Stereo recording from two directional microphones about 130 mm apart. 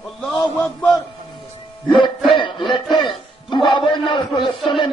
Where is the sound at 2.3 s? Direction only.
40° left (ahead or behind).